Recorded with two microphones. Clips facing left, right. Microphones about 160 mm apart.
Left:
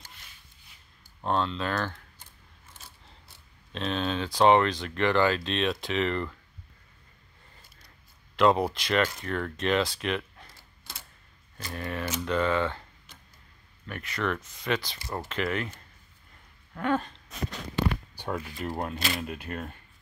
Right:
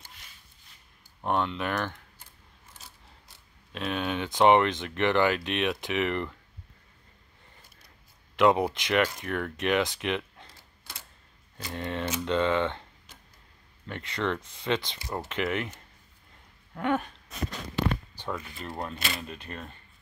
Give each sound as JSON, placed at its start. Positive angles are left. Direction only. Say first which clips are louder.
{"t": 1.2, "sound": "speech", "louder": "even", "side_deg": -15}
{"t": 3.7, "sound": "speech", "louder": "left 1 dB", "side_deg": -10}
{"t": 8.4, "sound": "speech", "louder": "even", "side_deg": -15}
{"t": 11.5, "sound": "speech", "louder": "right 1 dB", "side_deg": -20}
{"t": 13.8, "sound": "speech", "louder": "right 1 dB", "side_deg": -25}
{"t": 15.0, "sound": "speech", "louder": "even", "side_deg": -10}
{"t": 18.4, "sound": "speech", "louder": "left 4 dB", "side_deg": 10}